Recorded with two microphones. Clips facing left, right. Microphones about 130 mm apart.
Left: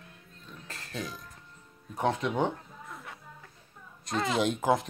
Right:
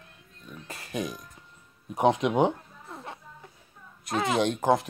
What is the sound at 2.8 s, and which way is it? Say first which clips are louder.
Music: right 5 dB; 30° right (ahead or behind).